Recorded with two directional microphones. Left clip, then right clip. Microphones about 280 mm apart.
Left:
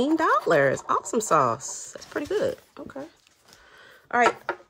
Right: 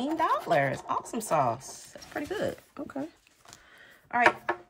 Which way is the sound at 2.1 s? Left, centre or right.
Centre.